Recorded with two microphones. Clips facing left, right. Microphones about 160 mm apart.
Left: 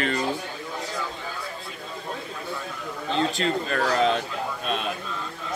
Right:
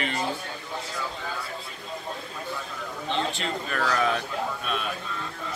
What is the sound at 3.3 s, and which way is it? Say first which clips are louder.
Speech: left 5 dB; 40° left (ahead or behind).